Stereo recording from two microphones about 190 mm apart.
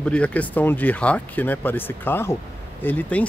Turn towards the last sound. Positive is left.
turn(degrees=10)  # may be behind; listen again after turning